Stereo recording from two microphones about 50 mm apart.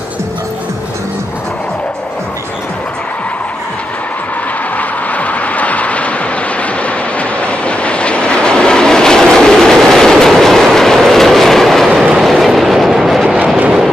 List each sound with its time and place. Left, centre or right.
4.7 s vehicle: left; by 13.3 s centre